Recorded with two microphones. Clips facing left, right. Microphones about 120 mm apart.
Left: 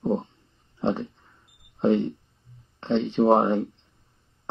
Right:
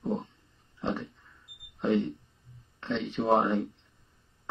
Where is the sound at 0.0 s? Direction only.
30° left (ahead or behind).